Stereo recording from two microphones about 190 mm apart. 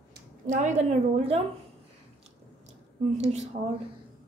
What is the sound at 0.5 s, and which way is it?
Speech, 40° right (ahead or behind).